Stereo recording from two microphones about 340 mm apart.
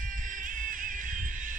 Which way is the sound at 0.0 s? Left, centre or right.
Right.